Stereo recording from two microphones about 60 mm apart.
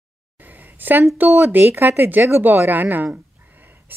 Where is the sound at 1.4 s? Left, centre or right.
Right.